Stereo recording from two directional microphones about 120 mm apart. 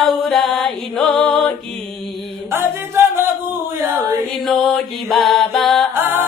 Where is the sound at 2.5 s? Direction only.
20° right (ahead or behind).